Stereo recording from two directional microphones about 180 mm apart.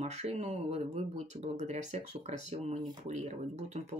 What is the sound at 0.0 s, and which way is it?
Speech, 35° right (ahead or behind).